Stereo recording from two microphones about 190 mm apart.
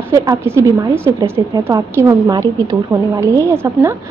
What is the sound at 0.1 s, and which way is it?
A woman's voice, 15° right (ahead or behind).